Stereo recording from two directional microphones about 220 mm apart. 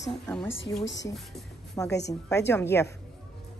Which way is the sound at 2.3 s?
15° left (ahead or behind).